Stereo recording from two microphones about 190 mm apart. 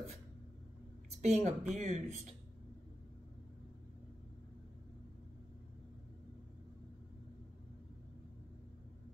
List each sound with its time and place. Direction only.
1.2 s speech: 35° right (ahead or behind)